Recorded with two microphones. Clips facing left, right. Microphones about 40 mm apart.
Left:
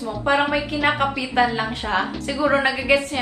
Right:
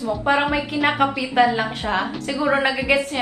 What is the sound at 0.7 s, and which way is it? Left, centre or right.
A woman's voice, centre.